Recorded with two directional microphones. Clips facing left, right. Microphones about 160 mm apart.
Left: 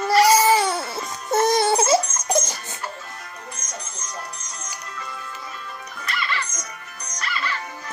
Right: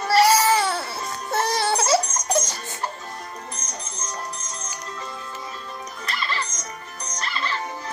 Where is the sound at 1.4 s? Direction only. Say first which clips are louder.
Left 5 dB; 20° left (ahead or behind).